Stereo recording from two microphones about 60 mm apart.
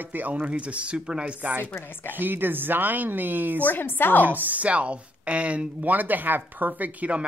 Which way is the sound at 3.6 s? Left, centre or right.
Left.